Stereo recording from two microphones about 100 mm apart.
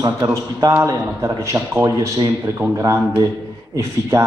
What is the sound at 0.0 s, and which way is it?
Speech, 35° right (ahead or behind).